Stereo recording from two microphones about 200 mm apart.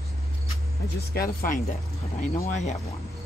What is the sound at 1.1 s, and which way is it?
Speech, 45° left (ahead or behind).